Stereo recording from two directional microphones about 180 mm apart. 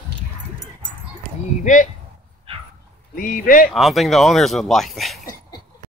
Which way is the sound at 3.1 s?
50° left (ahead or behind).